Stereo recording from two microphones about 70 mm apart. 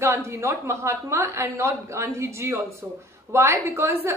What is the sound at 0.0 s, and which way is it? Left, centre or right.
A woman's voice, right.